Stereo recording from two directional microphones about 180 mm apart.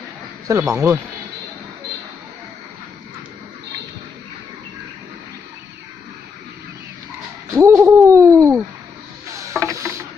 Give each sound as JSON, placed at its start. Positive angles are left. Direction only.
{"t": 0.5, "sound": "speech", "side_deg": -15}
{"t": 7.5, "sound": "hoot", "side_deg": -15}
{"t": 9.3, "sound": "a sound", "side_deg": -15}